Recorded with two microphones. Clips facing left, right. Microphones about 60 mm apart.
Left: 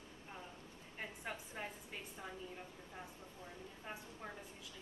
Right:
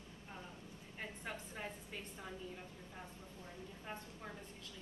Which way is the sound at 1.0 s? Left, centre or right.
Centre.